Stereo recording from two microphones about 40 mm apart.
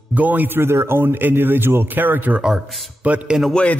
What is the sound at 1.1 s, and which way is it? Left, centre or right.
Speech, right.